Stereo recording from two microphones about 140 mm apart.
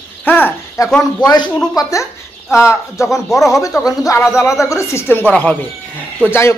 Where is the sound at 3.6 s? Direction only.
25° left (ahead or behind).